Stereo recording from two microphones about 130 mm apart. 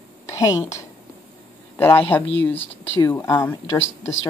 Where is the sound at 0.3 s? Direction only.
25° left (ahead or behind).